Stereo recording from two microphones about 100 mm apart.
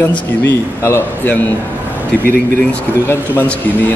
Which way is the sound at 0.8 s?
25° left (ahead or behind).